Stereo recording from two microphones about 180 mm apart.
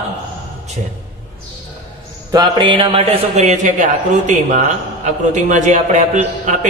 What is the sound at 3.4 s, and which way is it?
A man's voice, 40° right (ahead or behind).